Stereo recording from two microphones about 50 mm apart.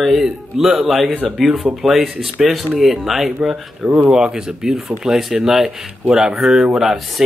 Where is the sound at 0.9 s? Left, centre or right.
Centre.